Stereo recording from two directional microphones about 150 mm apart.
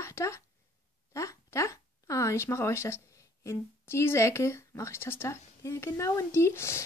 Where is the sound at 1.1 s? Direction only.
20° left (ahead or behind).